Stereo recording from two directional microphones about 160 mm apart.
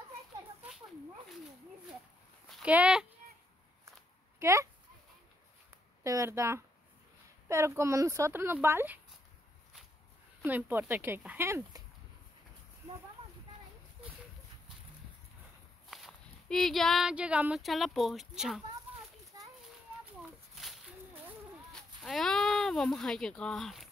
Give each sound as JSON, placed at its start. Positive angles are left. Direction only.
{"t": 2.4, "sound": "a sound", "side_deg": 0}
{"t": 2.7, "sound": "speech", "side_deg": -5}
{"t": 4.4, "sound": "speech", "side_deg": -20}
{"t": 6.0, "sound": "speech", "side_deg": -20}
{"t": 10.4, "sound": "speech", "side_deg": -10}
{"t": 15.9, "sound": "speech", "side_deg": 0}
{"t": 20.2, "sound": "a sound", "side_deg": 0}
{"t": 22.0, "sound": "speech", "side_deg": 0}